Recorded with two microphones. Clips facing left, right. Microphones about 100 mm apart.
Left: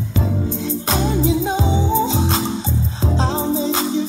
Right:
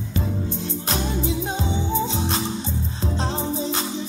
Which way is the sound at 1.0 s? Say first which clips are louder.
Left 10 dB; 90° left.